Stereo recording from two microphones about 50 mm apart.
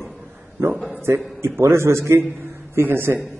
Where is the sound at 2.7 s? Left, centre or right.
Right.